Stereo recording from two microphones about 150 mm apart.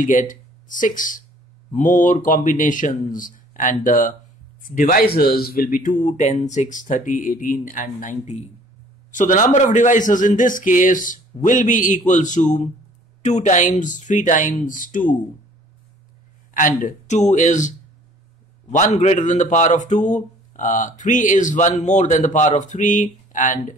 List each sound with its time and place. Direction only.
0.0 s a man's voice: 60° left (ahead or behind)
16.5 s a man's voice: 60° left (ahead or behind)